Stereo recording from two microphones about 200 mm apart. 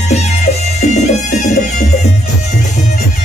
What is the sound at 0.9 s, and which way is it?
Music, 40° left (ahead or behind).